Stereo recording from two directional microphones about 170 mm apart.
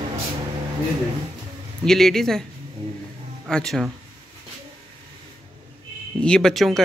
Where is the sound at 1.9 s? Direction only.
Centre (ahead or behind).